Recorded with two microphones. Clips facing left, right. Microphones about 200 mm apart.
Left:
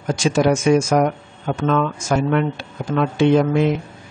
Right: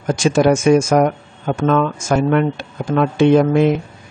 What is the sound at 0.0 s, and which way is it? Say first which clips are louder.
Speech: right 3 dB; 50° right (ahead or behind).